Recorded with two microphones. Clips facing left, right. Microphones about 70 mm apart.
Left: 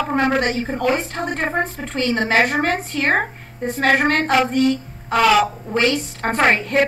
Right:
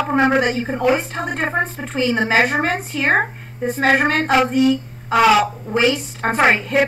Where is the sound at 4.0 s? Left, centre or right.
Centre.